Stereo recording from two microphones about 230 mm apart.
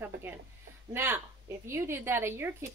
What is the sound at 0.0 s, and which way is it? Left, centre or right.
A woman's voice, centre.